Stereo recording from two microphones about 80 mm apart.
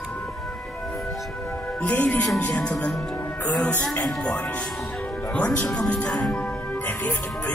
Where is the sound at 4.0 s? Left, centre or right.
Centre.